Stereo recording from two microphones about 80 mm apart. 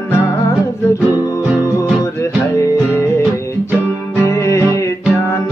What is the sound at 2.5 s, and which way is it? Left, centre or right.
Music, left.